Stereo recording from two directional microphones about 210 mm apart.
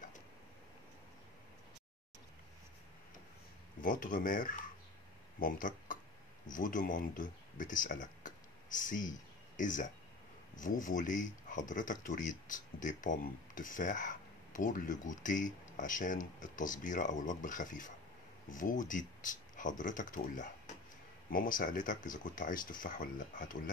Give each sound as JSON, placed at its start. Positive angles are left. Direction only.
{"t": 3.8, "sound": "speech", "side_deg": 40}